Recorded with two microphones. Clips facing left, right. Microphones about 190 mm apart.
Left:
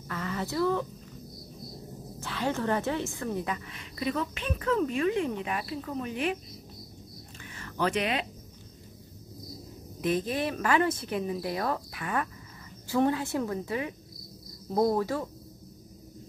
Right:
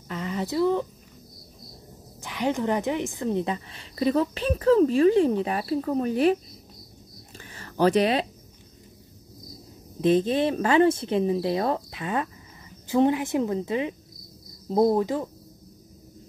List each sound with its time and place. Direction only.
0.1 s speech: 20° right (ahead or behind)
2.1 s a woman's voice: 15° right (ahead or behind); by 6.3 s 40° right (ahead or behind)
7.4 s a sound: 35° right (ahead or behind)
9.9 s speech: 25° right (ahead or behind)